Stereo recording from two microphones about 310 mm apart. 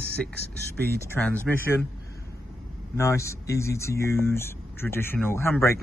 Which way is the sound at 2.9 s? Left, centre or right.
Centre.